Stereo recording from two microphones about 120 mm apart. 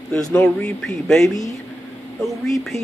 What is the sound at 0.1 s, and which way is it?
A man's voice, 10° left (ahead or behind).